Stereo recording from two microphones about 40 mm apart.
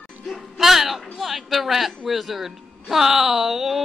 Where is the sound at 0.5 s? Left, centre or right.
Centre.